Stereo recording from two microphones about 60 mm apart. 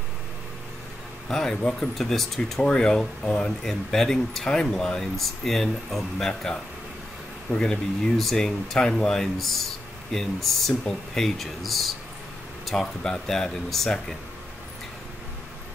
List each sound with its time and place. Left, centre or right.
1.3 s speech: centre